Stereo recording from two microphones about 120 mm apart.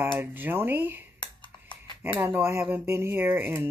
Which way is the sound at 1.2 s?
40° left (ahead or behind).